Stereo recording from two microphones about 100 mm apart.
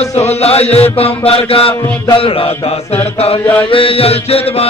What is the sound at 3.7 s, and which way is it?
Mantra, 70° left (ahead or behind).